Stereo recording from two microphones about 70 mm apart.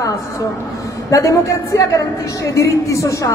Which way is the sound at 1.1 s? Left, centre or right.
Left.